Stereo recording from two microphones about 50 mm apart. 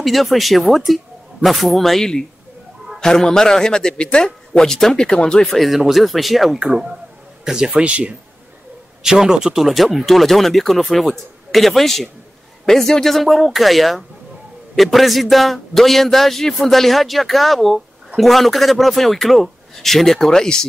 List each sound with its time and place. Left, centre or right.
0.0 s speech: centre
5.4 s a man's voice: centre
9.7 s speech: centre